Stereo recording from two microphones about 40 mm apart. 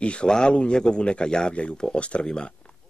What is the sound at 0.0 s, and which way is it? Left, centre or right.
Speech, left.